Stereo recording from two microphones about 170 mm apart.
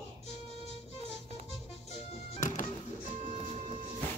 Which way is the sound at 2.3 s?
45° left (ahead or behind).